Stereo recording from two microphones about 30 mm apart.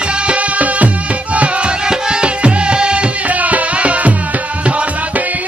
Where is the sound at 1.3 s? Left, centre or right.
Right.